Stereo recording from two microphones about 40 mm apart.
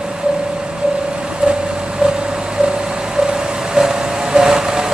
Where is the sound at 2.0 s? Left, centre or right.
Right.